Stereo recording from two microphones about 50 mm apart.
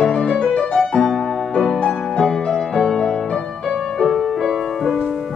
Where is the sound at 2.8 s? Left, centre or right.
Centre.